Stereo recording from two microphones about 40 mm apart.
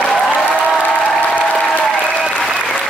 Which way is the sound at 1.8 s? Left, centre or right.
Centre.